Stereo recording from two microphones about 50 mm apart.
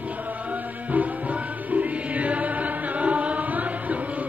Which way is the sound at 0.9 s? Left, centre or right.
Right.